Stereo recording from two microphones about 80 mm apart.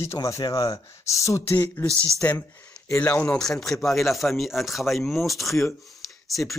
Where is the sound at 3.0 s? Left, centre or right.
Left.